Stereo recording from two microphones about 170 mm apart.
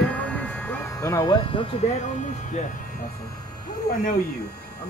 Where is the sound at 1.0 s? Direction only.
20° left (ahead or behind).